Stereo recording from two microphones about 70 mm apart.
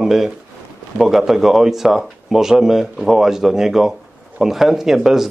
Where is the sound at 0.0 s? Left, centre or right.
Centre.